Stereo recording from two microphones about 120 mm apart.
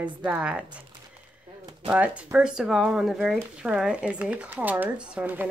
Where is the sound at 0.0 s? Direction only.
10° right (ahead or behind).